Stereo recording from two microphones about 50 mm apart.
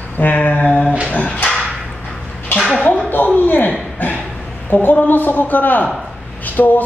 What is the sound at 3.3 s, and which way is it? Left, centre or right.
Speech, left.